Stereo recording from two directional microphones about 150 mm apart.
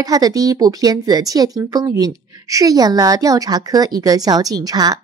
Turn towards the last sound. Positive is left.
turn(degrees=-25)  # may be behind; listen again after turning